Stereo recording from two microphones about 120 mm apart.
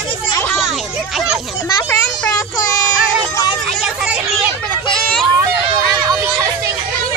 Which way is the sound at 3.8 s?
5° right (ahead or behind).